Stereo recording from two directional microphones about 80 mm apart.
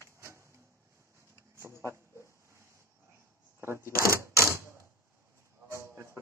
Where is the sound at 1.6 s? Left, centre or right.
Right.